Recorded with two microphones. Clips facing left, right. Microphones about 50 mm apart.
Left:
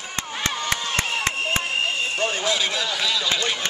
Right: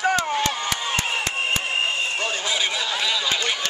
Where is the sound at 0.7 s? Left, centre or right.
Centre.